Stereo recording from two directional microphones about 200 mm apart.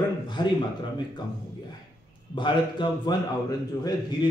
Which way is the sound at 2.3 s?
25° left (ahead or behind).